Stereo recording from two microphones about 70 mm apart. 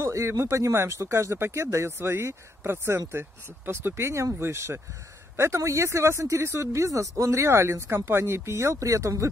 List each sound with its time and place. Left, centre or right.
0.0 s speech: right